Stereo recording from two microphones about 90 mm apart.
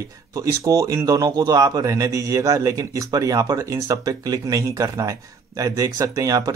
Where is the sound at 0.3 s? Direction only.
35° right (ahead or behind).